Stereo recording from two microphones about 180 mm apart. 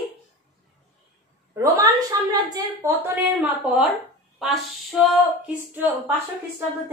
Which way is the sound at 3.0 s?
10° right (ahead or behind).